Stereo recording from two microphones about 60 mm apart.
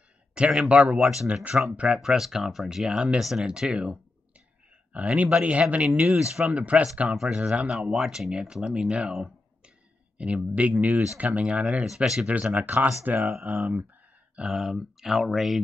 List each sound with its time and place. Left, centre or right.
0.3 s a man's voice: centre
0.9 s speech: centre
1.3 s speech: centre
2.0 s a man's voice: centre; by 5.9 s right
6.0 s speech: centre
6.5 s a man's voice: right
7.7 s a man's voice: centre; by 11.6 s right
11.8 s speech: centre
12.3 s a man's voice: right
14.3 s speech: centre